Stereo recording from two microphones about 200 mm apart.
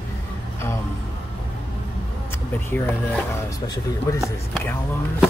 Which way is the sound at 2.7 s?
10° left (ahead or behind).